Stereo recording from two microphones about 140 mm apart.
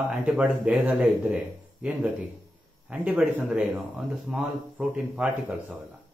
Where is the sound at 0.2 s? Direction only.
10° right (ahead or behind).